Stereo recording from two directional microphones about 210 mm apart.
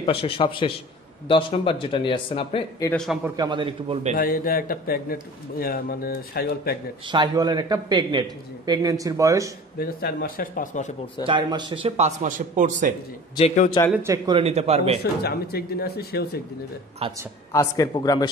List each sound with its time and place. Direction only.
0.0 s speech: 25° left (ahead or behind)
2.9 s a man's voice: centre (ahead or behind)
3.3 s a man's voice: 20° right (ahead or behind)
4.2 s a man's voice: 45° left (ahead or behind)
7.1 s a man's voice: 20° right (ahead or behind)
9.8 s a man's voice: 45° left (ahead or behind)
11.2 s a man's voice: 25° right (ahead or behind)
12.2 s a man's voice: 35° right (ahead or behind)
13.9 s speech: 15° right (ahead or behind)
14.4 s a man's voice: 30° right (ahead or behind)
15.2 s a man's voice: 45° left (ahead or behind)
17.0 s a man's voice: 25° right (ahead or behind)
17.5 s speech: 15° left (ahead or behind)